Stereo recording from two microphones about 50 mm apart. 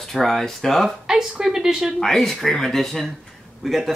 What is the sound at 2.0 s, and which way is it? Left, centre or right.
Speech, centre.